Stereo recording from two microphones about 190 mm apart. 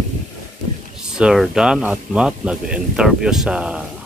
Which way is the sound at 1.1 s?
Centre (ahead or behind).